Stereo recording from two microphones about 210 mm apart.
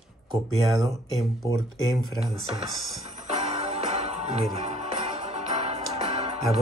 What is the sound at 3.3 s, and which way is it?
Music, 30° right (ahead or behind).